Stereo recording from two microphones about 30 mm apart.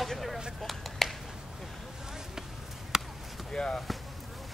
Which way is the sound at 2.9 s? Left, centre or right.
Centre.